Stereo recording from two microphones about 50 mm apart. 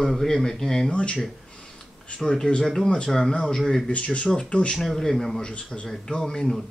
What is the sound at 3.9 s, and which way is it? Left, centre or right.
Speech, left.